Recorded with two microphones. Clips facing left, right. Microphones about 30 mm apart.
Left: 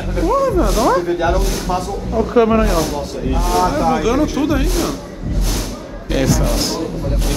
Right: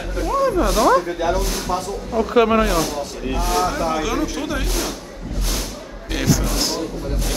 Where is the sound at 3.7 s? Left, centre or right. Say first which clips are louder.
Left 5 dB; centre.